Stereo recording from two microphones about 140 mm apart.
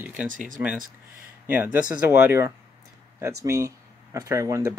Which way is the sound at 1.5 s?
15° right (ahead or behind).